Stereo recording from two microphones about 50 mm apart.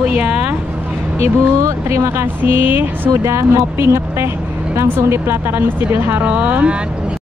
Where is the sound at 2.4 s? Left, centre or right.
Right.